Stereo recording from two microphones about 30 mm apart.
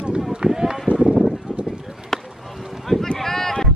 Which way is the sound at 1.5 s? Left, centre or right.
Centre.